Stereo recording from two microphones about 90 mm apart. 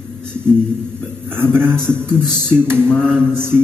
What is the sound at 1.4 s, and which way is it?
Speech, 25° right (ahead or behind).